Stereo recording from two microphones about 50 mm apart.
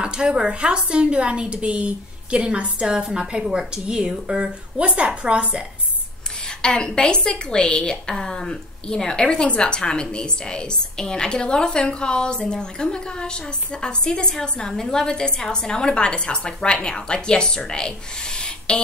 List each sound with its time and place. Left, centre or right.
0.0 s a woman's voice: centre
6.6 s a woman's voice: centre